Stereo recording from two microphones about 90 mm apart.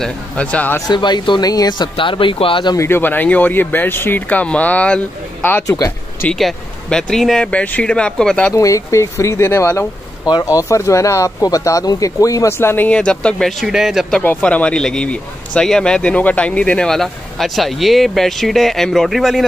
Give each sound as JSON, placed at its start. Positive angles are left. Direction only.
{"t": 0.0, "sound": "speech", "side_deg": 15}
{"t": 0.9, "sound": "speech", "side_deg": 55}
{"t": 2.8, "sound": "speech", "side_deg": 25}
{"t": 5.7, "sound": "speech", "side_deg": 40}
{"t": 6.3, "sound": "speech", "side_deg": 5}
{"t": 8.5, "sound": "speech", "side_deg": 35}
{"t": 10.2, "sound": "speech", "side_deg": 45}
{"t": 12.5, "sound": "speech", "side_deg": 25}
{"t": 14.2, "sound": "speech", "side_deg": 20}